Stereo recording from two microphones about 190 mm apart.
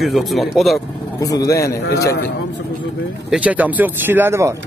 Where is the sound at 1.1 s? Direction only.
20° left (ahead or behind).